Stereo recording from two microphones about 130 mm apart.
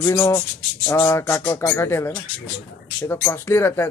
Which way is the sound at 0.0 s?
20° left (ahead or behind).